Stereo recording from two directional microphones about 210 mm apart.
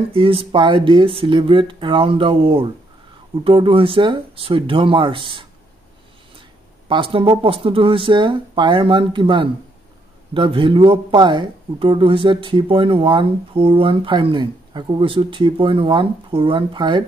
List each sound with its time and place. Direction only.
0.1 s speech: 25° right (ahead or behind)
6.9 s speech: 25° right (ahead or behind)